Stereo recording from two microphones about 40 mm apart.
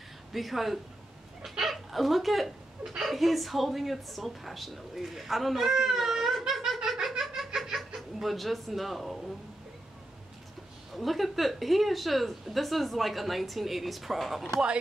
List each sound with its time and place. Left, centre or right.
0.3 s speech: centre
5.8 s a sound: centre
7.2 s laughter: centre
10.9 s speech: centre